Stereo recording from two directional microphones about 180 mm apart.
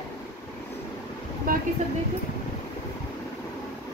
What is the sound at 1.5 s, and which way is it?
Speech, 55° right (ahead or behind).